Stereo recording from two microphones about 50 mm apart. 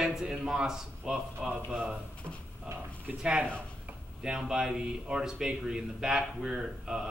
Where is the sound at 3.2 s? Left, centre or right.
Centre.